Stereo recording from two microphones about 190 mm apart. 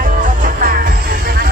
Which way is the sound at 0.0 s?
45° right (ahead or behind).